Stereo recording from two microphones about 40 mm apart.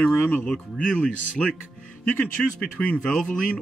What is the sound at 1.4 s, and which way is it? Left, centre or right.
Speech, centre.